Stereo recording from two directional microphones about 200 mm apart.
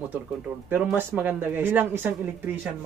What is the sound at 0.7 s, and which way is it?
Speech, 10° right (ahead or behind).